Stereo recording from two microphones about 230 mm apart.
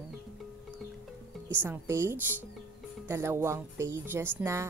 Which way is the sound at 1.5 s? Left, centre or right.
Centre.